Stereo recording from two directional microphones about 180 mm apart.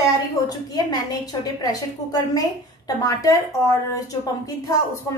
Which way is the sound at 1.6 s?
20° left (ahead or behind).